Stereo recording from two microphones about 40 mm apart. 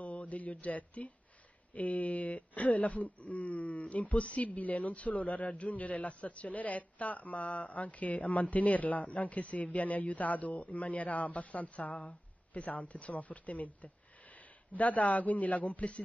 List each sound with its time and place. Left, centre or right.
0.0 s speech: left